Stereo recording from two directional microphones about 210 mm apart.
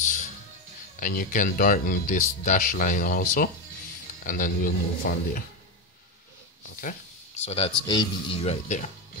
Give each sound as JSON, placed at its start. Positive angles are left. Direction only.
{"t": 0.0, "sound": "music", "side_deg": 35}
{"t": 0.9, "sound": "speech", "side_deg": 40}
{"t": 6.8, "sound": "speech", "side_deg": 35}